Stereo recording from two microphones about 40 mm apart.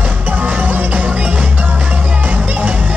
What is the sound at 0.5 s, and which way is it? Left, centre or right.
Music, right.